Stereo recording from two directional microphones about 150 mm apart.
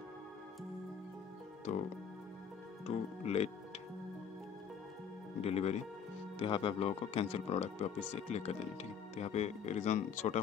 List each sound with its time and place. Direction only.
2.9 s speech: 45° left (ahead or behind)
5.4 s speech: 45° left (ahead or behind)
6.4 s speech: 35° left (ahead or behind); by 10.4 s 50° left (ahead or behind)